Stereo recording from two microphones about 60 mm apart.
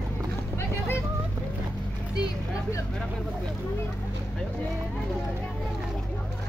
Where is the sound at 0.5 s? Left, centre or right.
Left.